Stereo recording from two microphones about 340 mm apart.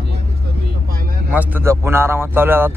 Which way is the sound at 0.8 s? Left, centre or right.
Right.